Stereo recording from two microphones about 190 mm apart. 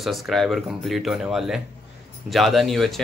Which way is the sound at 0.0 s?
Centre (ahead or behind).